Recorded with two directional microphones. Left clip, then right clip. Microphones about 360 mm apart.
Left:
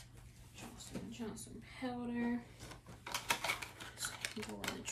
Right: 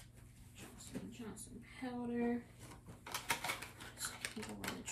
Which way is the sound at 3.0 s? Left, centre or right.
Centre.